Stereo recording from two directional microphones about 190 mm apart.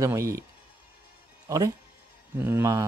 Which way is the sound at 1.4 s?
15° right (ahead or behind).